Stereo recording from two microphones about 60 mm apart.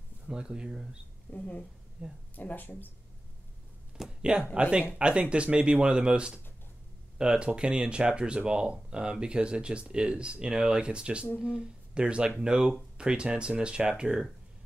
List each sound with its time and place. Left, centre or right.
0.3 s speech: centre
1.3 s speech: left
2.0 s speech: centre
2.3 s speech: left
4.2 s speech: centre